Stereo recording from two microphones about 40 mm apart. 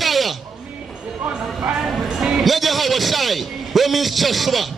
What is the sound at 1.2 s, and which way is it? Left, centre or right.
Speech, right.